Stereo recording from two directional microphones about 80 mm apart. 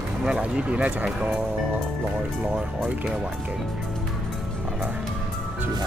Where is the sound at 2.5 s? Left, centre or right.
Centre.